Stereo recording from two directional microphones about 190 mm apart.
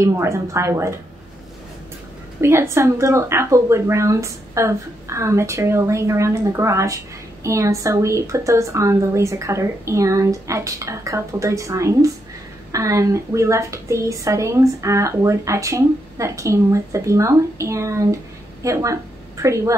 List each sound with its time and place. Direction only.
0.0 s a woman's voice: 15° right (ahead or behind)
2.4 s a woman's voice: 15° right (ahead or behind)